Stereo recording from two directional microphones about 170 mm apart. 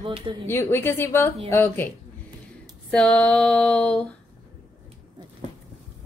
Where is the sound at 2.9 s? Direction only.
5° left (ahead or behind).